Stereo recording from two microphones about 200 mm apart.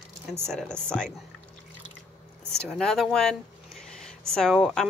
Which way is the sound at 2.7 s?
Centre (ahead or behind).